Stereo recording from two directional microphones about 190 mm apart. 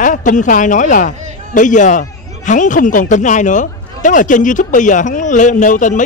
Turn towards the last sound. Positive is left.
turn(degrees=40)  # may be behind; listen again after turning